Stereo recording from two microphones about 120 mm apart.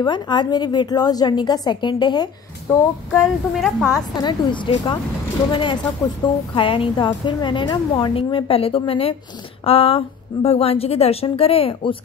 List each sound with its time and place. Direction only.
0.0 s a woman's voice: 40° left (ahead or behind)
3.1 s a woman's voice: centre (ahead or behind)
4.1 s a woman's voice: 35° left (ahead or behind)